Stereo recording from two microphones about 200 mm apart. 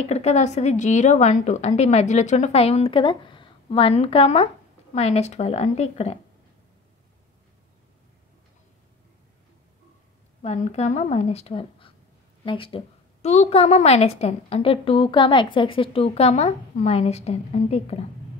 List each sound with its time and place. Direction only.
0.0 s a woman's voice: 35° left (ahead or behind)
10.4 s a woman's voice: 35° left (ahead or behind)